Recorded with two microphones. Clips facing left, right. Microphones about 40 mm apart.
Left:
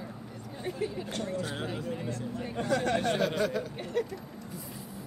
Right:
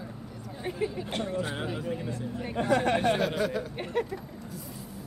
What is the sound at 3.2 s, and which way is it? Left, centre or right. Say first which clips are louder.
Speech: right 1 dB; centre.